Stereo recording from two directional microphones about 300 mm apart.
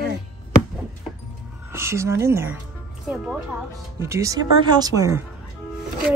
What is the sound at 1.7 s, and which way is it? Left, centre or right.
Speech, centre.